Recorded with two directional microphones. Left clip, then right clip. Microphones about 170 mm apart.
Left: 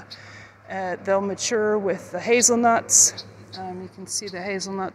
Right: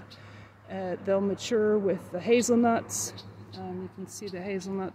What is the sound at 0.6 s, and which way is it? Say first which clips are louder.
Speech: left 5 dB; 25° right (ahead or behind).